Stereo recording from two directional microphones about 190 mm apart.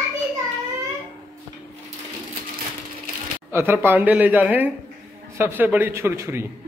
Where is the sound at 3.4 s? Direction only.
10° right (ahead or behind).